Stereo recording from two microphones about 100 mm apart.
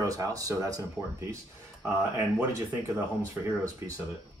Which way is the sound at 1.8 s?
30° right (ahead or behind).